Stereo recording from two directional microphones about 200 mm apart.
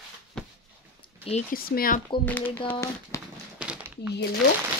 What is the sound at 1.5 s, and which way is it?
Speech, 45° left (ahead or behind).